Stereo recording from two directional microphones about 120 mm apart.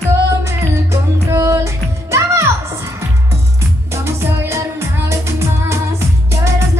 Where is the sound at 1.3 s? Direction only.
20° right (ahead or behind).